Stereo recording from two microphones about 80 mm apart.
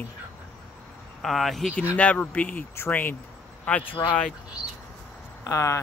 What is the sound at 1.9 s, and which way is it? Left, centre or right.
A man's voice, centre.